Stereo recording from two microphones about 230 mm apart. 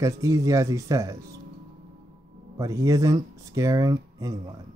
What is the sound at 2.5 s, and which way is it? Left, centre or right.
Speech, centre.